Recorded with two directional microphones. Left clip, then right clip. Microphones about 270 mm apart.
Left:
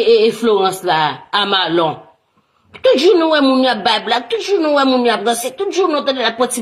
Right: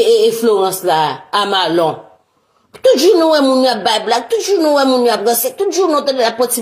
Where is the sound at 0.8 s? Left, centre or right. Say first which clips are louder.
Right 1 dB; centre.